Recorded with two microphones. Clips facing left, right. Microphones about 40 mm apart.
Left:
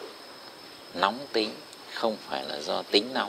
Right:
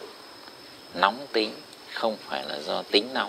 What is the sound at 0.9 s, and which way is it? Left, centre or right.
A man's voice, centre.